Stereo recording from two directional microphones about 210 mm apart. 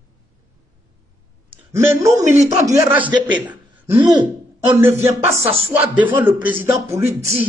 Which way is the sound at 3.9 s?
20° right (ahead or behind).